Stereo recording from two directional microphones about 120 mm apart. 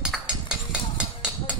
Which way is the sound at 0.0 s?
5° right (ahead or behind).